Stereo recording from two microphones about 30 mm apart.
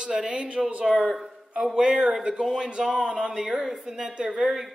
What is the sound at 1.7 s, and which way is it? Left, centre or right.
A man's voice, right.